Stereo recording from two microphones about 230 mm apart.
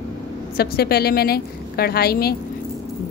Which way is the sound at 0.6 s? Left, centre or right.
Left.